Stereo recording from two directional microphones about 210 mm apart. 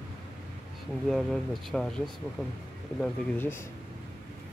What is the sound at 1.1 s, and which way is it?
Speech, centre (ahead or behind).